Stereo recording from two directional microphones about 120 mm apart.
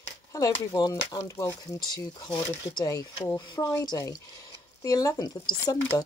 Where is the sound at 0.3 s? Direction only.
30° left (ahead or behind).